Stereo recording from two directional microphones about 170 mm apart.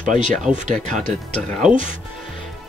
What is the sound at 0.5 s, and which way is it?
Speech, 45° right (ahead or behind).